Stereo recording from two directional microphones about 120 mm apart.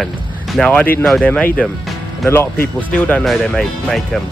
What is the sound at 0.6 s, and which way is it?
Speech, 10° left (ahead or behind).